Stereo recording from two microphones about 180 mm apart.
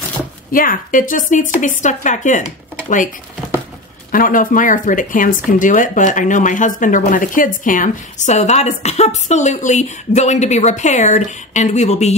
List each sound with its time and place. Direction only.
0.5 s speech: 50° left (ahead or behind)
4.1 s speech: 50° left (ahead or behind)